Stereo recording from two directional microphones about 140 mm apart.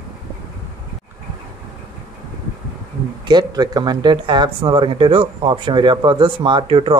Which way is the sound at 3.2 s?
30° right (ahead or behind).